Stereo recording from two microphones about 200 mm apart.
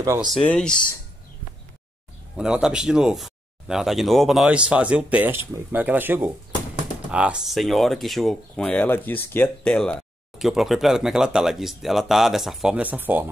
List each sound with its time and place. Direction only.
0.0 s speech: 15° right (ahead or behind)
0.3 s speech: 5° left (ahead or behind)
2.3 s speech: 5° right (ahead or behind)